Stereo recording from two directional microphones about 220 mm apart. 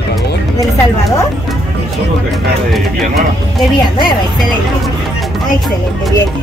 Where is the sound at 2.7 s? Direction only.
Centre (ahead or behind).